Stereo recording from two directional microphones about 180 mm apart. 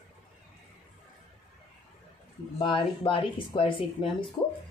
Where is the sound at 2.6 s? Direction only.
30° left (ahead or behind).